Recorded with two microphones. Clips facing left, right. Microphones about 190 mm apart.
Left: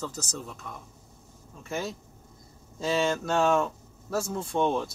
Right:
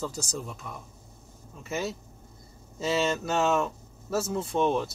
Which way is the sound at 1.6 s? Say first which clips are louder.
Right 1 dB; 5° right (ahead or behind).